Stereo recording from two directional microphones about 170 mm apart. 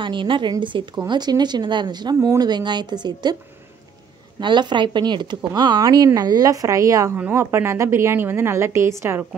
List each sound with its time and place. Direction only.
0.0 s speech: 30° right (ahead or behind)
4.4 s speech: 25° right (ahead or behind)